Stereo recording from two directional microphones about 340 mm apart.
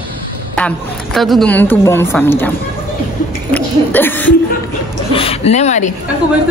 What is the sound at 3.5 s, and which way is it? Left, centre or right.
Speech, centre.